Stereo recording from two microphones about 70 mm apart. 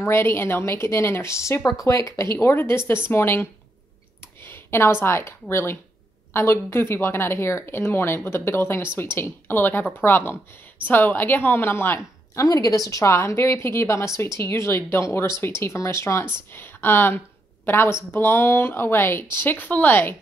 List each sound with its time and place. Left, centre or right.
0.0 s speech: left
2.3 s speech: left
4.2 s clicking: left
5.0 s speech: left
12.4 s a woman's voice: left